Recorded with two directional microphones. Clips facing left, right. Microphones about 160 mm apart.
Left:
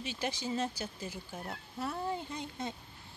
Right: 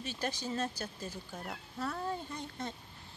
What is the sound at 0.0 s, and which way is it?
Speech, 10° left (ahead or behind).